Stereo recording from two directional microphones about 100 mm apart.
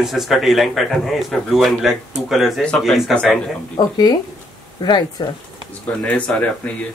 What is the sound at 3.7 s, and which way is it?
Speech, 45° left (ahead or behind).